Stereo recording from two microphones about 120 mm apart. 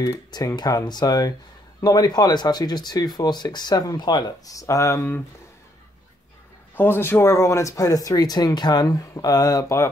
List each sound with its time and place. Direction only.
0.0 s speech: 30° left (ahead or behind)
6.7 s speech: 20° left (ahead or behind)